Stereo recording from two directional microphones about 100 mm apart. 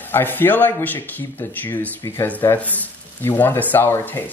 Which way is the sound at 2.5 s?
25° left (ahead or behind).